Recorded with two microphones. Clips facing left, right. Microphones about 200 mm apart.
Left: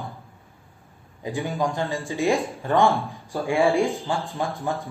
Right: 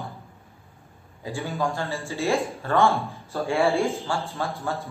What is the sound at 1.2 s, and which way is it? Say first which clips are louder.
A man's voice: left 2 dB; 15° left (ahead or behind).